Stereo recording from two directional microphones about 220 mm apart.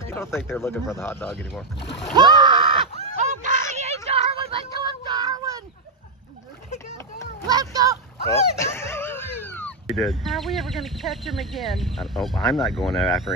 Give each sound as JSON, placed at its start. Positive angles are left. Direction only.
{"t": 0.0, "sound": "speech", "side_deg": 10}
{"t": 2.1, "sound": "a sound", "side_deg": -20}
{"t": 3.2, "sound": "a sound", "side_deg": -35}
{"t": 3.7, "sound": "child singing", "side_deg": -30}
{"t": 7.4, "sound": "speech", "side_deg": -15}
{"t": 8.5, "sound": "dog", "side_deg": 10}
{"t": 9.8, "sound": "speech", "side_deg": 0}